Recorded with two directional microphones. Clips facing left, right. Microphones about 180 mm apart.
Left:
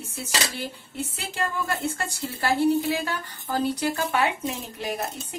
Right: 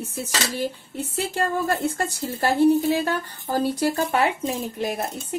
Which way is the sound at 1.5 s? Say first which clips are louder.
Right 5 dB; 40° right (ahead or behind).